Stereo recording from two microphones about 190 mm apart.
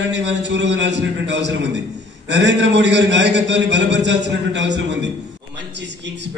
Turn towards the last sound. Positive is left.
turn(degrees=-70)  # may be behind; listen again after turning